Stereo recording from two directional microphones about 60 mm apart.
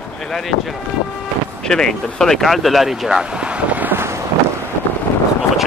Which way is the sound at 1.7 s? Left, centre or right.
Centre.